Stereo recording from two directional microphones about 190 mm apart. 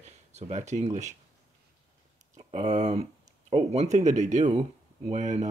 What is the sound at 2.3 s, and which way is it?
Speech, 40° right (ahead or behind).